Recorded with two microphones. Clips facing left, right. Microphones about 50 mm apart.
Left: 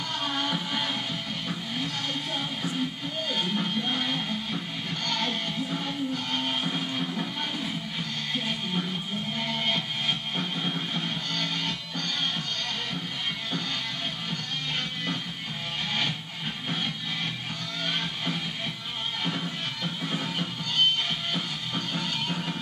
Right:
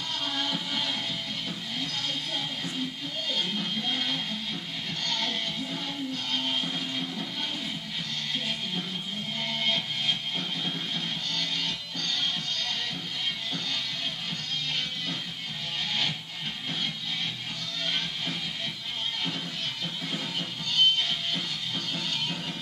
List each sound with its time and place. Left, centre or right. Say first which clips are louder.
0.2 s music: left 2 dB; left
3.3 s music: left 3 dB; left
9.7 s music: left 1 dB; left
19.8 s music: left 3 dB; left